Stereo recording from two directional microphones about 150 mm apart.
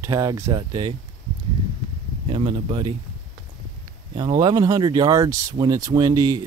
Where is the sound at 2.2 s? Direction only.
35° right (ahead or behind).